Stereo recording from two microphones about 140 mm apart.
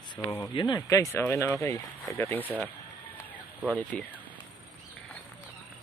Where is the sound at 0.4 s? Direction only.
30° left (ahead or behind).